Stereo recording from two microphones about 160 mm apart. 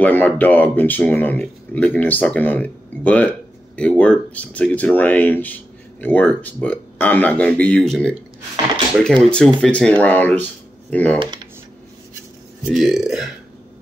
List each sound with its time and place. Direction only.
0.0 s speech: 10° left (ahead or behind)
12.6 s a man's voice: centre (ahead or behind)